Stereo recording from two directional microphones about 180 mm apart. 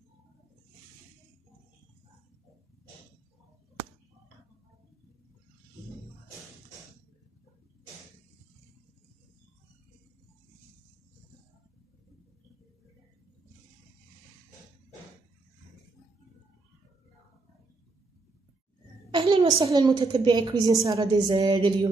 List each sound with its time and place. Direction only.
19.0 s a woman's voice: 25° right (ahead or behind)